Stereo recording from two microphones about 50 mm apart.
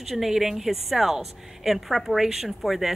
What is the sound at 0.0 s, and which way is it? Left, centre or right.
A woman's voice, centre.